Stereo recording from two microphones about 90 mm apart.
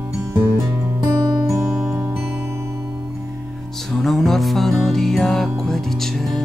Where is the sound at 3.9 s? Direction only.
5° left (ahead or behind).